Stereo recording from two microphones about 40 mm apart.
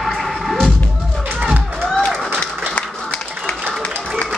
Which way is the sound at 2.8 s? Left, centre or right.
Left.